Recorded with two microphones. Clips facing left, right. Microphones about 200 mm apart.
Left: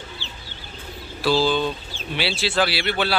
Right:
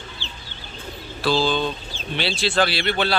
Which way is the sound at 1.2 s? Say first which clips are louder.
Left 1 dB; 10° left (ahead or behind).